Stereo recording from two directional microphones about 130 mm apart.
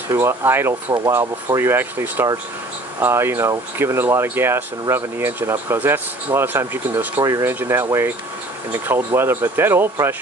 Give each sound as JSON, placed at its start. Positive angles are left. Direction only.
{"t": 0.1, "sound": "speech", "side_deg": -20}